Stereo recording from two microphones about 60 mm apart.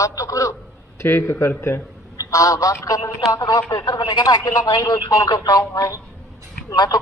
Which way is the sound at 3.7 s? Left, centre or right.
Left.